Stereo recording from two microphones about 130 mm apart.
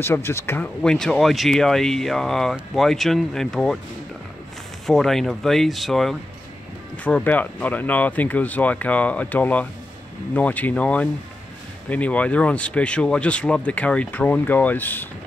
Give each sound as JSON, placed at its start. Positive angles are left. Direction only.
{"t": 0.0, "sound": "speech", "side_deg": 20}
{"t": 0.8, "sound": "speech", "side_deg": 5}
{"t": 4.8, "sound": "speech", "side_deg": 0}